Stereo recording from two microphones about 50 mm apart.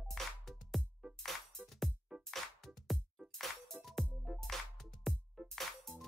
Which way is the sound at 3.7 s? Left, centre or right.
Right.